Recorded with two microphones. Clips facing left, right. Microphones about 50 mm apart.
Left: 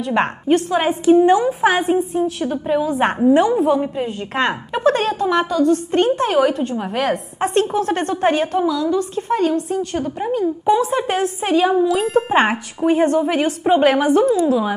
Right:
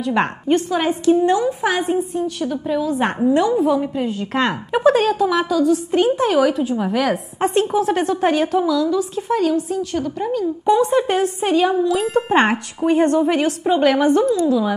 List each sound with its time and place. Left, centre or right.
0.0 s a woman's voice: centre; by 2.9 s left
2.9 s a woman's voice: centre
3.3 s a woman's voice: centre
9.8 s a woman's voice: centre
10.6 s a woman's voice: centre